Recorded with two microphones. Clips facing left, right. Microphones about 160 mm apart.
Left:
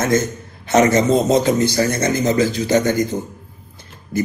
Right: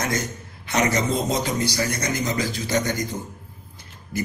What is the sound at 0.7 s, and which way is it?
Speech, 45° left (ahead or behind).